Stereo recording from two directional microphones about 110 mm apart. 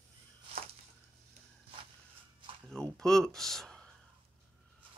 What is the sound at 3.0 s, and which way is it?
Speech, 5° left (ahead or behind).